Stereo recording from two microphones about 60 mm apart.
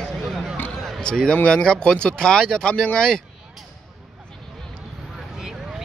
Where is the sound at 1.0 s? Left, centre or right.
Centre.